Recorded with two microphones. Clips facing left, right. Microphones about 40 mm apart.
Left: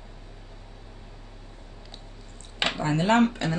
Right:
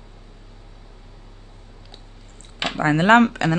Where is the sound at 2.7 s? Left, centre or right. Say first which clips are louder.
Right 8 dB; right.